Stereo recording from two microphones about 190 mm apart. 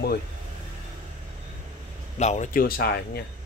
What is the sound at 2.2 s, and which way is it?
Speech, 40° left (ahead or behind).